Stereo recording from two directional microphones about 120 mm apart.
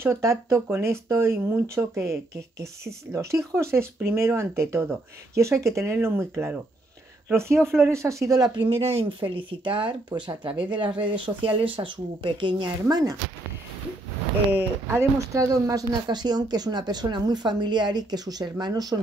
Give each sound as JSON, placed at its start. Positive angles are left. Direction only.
{"t": 0.0, "sound": "speech", "side_deg": -25}
{"t": 8.5, "sound": "speech", "side_deg": -50}
{"t": 14.5, "sound": "speech", "side_deg": -15}
{"t": 15.0, "sound": "speech", "side_deg": -25}